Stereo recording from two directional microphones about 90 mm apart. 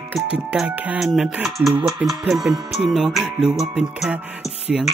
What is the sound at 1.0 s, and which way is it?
Speech, centre (ahead or behind).